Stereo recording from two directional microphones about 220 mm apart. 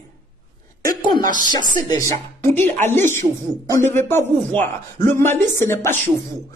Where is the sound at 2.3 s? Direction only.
10° left (ahead or behind).